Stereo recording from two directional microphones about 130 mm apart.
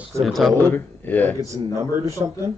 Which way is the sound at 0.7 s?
15° left (ahead or behind).